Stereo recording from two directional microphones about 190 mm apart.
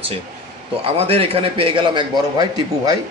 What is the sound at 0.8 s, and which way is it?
Speech, 30° right (ahead or behind).